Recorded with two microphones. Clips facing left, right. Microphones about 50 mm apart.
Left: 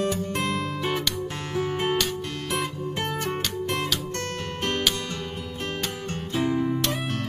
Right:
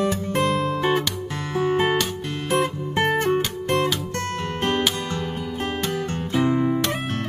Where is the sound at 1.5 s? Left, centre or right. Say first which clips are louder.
Right 6 dB; right.